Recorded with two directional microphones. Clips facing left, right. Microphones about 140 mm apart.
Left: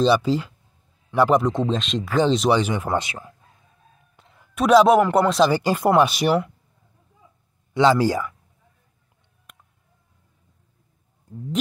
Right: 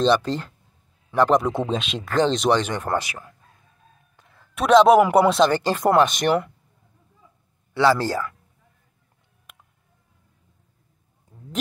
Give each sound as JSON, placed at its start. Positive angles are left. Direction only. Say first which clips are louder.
{"t": 0.0, "sound": "speech", "louder": "left 1 dB", "side_deg": 5}
{"t": 1.4, "sound": "speech", "louder": "left 2 dB", "side_deg": -5}
{"t": 3.0, "sound": "speech", "louder": "left 2 dB", "side_deg": 20}
{"t": 4.2, "sound": "a sound", "louder": "left 2 dB", "side_deg": 20}
{"t": 4.6, "sound": "speech", "louder": "right 1 dB", "side_deg": 0}
{"t": 7.7, "sound": "speech", "louder": "left 2 dB", "side_deg": 15}
{"t": 9.5, "sound": "a sound", "louder": "even", "side_deg": 0}